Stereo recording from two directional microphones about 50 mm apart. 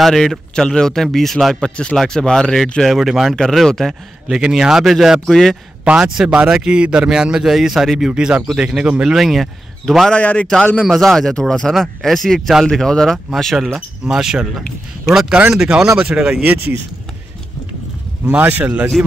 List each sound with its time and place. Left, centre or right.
0.0 s a man's voice: centre
1.6 s a man's voice: centre
3.3 s a man's voice: centre
4.4 s speech: centre
5.3 s a man's voice: centre
5.9 s speech: centre
8.1 s speech: centre
9.0 s speech: centre
10.1 s a man's voice: left
10.9 s a man's voice: centre
13.7 s speech: centre
18.2 s speech: right